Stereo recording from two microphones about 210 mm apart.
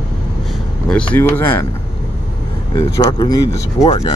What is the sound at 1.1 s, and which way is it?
Speech, 10° left (ahead or behind).